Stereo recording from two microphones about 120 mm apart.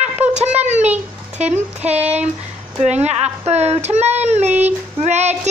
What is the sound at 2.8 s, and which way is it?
Speech, 65° right (ahead or behind).